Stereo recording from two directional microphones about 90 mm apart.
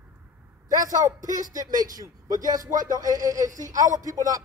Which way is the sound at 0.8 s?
45° right (ahead or behind).